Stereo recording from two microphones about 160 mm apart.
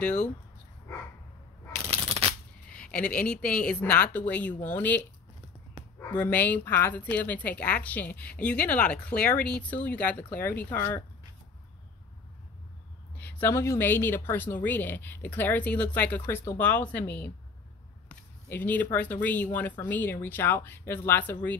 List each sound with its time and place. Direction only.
0.0 s speech: 5° left (ahead or behind)
1.9 s a sound: 35° right (ahead or behind)
2.7 s speech: 5° left (ahead or behind)
13.2 s speech: 15° left (ahead or behind)
18.0 s a sound: 10° left (ahead or behind)
19.2 s speech: 10° left (ahead or behind)